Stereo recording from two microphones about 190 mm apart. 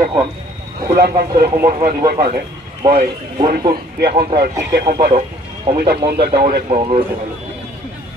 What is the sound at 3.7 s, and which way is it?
Speech, 55° right (ahead or behind).